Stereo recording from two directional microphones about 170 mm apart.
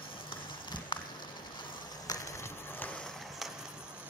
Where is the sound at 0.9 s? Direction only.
30° left (ahead or behind).